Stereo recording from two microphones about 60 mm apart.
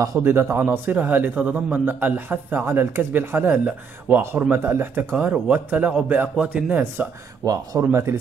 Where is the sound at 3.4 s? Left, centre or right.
Centre.